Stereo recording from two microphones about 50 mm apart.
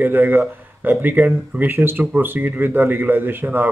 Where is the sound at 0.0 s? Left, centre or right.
Right.